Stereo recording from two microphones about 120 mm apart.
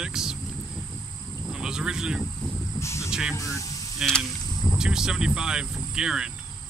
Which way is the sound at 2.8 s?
25° left (ahead or behind).